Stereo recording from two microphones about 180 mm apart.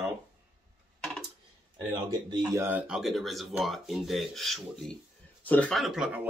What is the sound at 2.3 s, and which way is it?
Speech, 20° right (ahead or behind).